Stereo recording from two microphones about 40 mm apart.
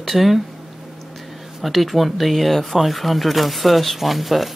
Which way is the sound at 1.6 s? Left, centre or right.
Centre.